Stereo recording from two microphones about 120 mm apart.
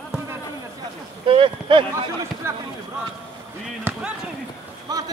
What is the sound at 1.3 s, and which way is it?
Speech, 45° right (ahead or behind).